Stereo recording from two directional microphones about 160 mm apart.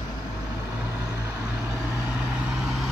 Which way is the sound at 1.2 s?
20° right (ahead or behind).